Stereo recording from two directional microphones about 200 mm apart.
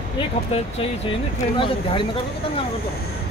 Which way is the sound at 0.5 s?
25° left (ahead or behind).